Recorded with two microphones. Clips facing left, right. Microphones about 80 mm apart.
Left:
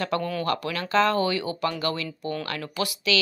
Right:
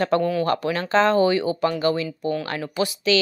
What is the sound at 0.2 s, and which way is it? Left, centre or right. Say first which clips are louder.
Speech: right 7 dB; centre.